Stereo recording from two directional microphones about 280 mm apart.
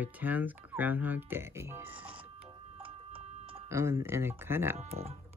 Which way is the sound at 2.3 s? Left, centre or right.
Centre.